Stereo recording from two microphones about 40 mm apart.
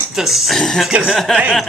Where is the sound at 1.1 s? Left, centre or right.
Centre.